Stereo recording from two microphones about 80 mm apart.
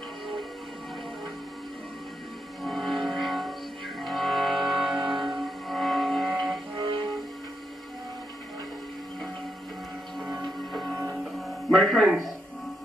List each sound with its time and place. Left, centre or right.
2.6 s music: centre
10.9 s music: right
11.3 s music: centre